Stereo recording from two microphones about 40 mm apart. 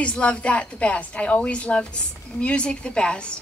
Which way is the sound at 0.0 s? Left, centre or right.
Left.